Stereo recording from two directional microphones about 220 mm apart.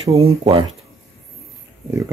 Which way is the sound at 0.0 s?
25° right (ahead or behind).